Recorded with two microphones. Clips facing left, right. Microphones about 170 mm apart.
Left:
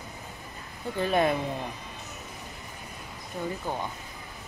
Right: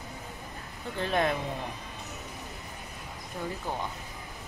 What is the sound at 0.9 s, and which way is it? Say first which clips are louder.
Speech: left 3 dB; 10° left (ahead or behind).